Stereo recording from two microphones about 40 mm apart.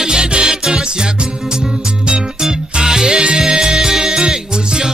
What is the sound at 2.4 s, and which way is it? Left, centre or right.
Music, centre.